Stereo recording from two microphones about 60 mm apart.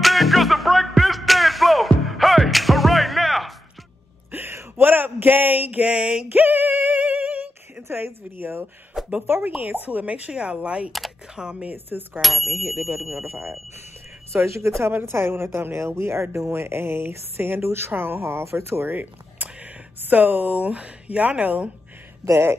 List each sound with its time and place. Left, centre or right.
0.0 s music: centre
4.3 s a sound: right
4.8 s speech: right
6.3 s a sound: right
9.2 s speech: right
9.8 s speech: right
11.7 s speech: right
12.2 s speech: centre
14.3 s speech: right
14.9 s speech: right
18.9 s speech: right